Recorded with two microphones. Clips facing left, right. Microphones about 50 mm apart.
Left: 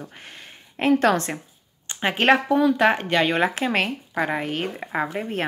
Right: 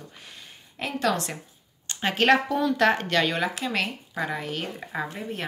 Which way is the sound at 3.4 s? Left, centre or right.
Left.